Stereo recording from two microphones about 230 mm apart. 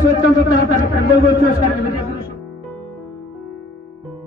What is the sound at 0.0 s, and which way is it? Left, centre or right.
A man's voice, left.